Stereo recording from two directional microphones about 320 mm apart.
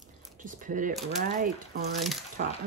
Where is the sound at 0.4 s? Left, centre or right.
Right.